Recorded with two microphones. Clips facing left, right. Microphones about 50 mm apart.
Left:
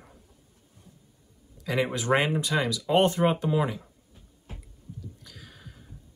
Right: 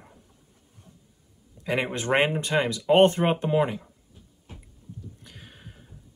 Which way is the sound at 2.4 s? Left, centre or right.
Right.